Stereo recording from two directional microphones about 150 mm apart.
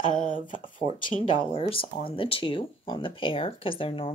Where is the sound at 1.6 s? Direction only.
35° left (ahead or behind).